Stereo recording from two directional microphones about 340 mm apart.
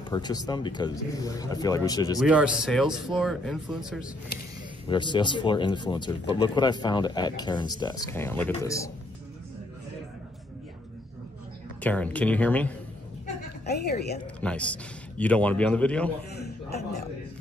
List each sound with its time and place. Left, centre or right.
0.1 s speech: centre
2.1 s speech: centre
4.8 s speech: centre
11.8 s speech: centre
13.7 s a woman's voice: left
14.2 s speech: centre
16.4 s a sound: left